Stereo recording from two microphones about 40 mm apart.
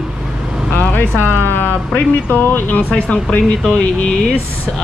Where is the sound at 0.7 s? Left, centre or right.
Left.